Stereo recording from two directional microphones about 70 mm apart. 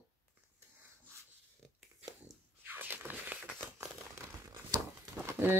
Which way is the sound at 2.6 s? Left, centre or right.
Right.